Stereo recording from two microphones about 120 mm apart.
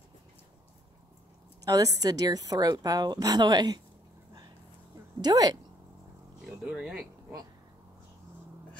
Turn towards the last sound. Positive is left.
turn(degrees=-5)  # may be behind; listen again after turning